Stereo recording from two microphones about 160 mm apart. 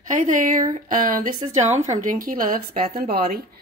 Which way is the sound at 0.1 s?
55° right (ahead or behind).